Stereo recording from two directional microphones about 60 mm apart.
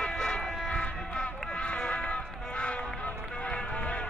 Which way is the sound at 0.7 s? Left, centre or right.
Centre.